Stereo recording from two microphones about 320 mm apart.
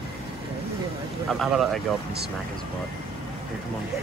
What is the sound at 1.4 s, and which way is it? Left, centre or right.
Speech, centre.